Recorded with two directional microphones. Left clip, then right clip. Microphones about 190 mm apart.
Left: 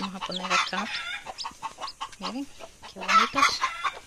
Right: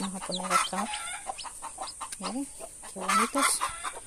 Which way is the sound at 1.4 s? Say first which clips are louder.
Left 4 dB; 45° right (ahead or behind).